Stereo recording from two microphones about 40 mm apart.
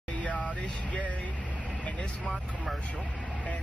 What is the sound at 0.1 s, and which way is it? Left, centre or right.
Vehicle, left.